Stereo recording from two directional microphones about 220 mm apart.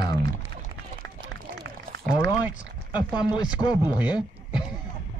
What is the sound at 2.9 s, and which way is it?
Speech, 20° left (ahead or behind).